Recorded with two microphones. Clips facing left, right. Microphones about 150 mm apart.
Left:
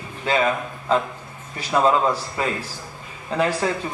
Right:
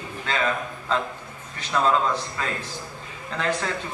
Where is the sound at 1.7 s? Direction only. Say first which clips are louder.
Left 3 dB; 15° left (ahead or behind).